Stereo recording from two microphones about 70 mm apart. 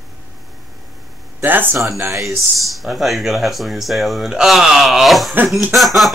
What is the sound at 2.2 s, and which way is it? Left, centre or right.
Speech, centre.